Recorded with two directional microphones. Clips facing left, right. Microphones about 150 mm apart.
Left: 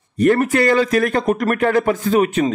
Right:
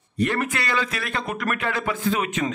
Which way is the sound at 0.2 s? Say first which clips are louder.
Left 10 dB; 40° left (ahead or behind).